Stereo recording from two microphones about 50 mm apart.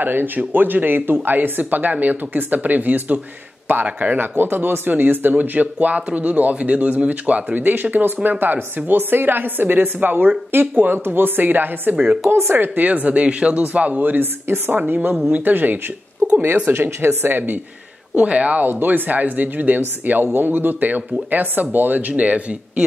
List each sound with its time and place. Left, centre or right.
0.0 s speech: right
7.6 s a woman's voice: right
18.1 s speech: right